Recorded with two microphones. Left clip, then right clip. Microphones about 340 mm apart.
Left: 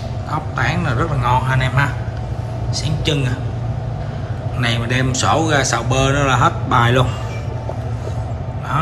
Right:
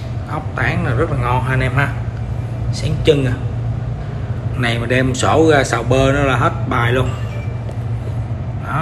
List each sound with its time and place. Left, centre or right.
0.3 s speech: centre
4.6 s speech: centre